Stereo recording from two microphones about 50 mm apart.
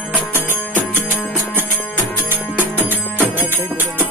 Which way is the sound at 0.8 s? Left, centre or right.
Right.